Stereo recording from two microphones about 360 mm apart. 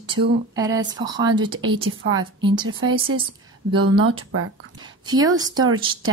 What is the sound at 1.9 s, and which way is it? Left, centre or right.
Speech, right.